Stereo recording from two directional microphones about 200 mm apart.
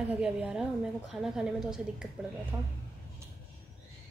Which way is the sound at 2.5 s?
20° right (ahead or behind).